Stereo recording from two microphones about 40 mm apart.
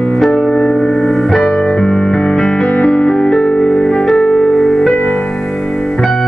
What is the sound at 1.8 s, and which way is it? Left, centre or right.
Music, centre.